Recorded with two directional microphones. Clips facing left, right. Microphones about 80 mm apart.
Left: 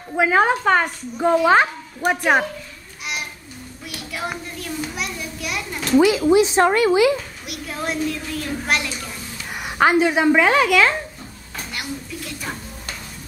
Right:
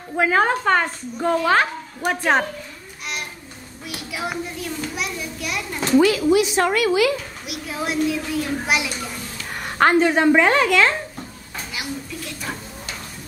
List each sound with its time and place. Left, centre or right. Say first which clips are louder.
0.1 s a woman's voice: left 1 dB; centre
3.8 s a child's voice: right 1 dB; centre
5.9 s speech: left 1 dB; centre
7.4 s a child's voice: right 1 dB; centre
9.5 s speech: even; centre
11.7 s a sound: even; centre